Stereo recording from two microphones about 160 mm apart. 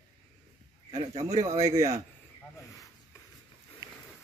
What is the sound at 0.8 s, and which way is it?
A man's voice, 40° right (ahead or behind).